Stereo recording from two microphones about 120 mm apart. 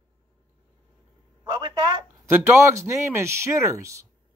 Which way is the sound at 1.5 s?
40° right (ahead or behind).